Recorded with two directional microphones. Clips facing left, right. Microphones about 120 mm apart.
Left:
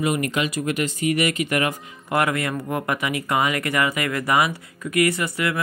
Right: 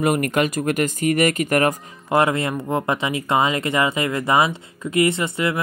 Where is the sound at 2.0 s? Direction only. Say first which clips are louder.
Right 3 dB; 25° right (ahead or behind).